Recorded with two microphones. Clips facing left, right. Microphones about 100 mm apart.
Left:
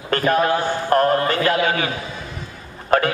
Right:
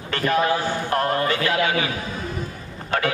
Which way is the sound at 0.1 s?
45° left (ahead or behind).